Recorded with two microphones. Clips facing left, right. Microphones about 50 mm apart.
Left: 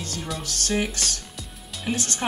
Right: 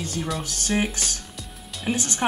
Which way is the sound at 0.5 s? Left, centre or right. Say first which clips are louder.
Even; centre.